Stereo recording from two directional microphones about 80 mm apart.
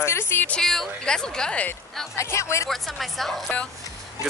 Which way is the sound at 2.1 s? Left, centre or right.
Left.